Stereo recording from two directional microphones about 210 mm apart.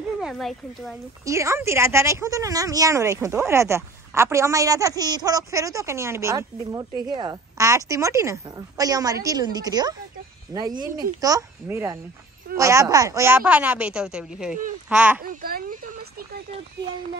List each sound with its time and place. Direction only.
0.2 s speech: centre (ahead or behind)
1.2 s a woman's voice: 15° right (ahead or behind)
15.2 s a sound: 45° right (ahead or behind)